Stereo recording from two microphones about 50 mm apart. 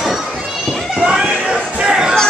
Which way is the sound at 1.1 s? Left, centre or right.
Right.